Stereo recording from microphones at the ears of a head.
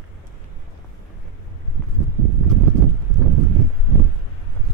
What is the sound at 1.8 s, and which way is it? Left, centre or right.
Clip-clop, right.